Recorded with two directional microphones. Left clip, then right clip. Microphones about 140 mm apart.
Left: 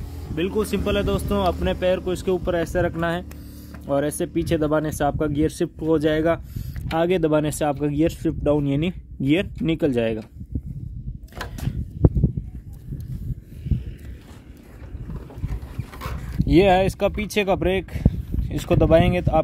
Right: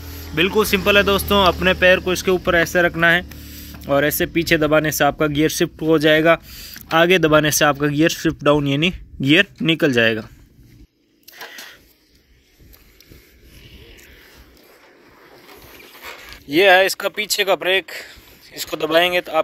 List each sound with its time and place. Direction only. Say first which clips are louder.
0.4 s speech: right 7 dB; 5° right (ahead or behind)
16.4 s speech: right 4 dB; centre (ahead or behind)